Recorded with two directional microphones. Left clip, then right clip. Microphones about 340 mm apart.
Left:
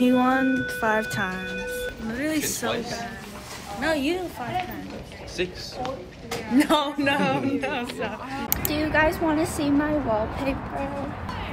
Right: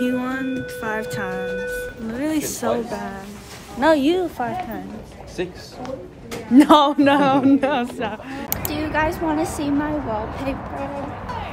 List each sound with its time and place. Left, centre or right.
0.0 s speech: centre
3.8 s speech: centre
6.5 s speech: centre
8.5 s a woman's voice: centre